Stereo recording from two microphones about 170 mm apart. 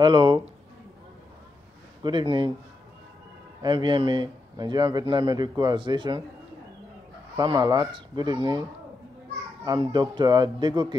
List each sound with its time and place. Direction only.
0.0 s speech: 30° right (ahead or behind)
2.0 s speech: 30° right (ahead or behind)
3.6 s speech: 25° right (ahead or behind)
7.3 s speech: 25° right (ahead or behind)
9.7 s speech: 25° right (ahead or behind)